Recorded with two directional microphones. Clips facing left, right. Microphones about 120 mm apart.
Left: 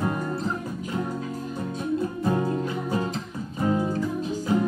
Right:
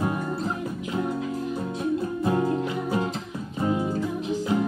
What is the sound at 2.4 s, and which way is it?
Music, 20° right (ahead or behind).